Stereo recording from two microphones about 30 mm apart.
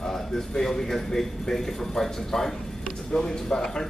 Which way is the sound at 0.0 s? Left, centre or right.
Centre.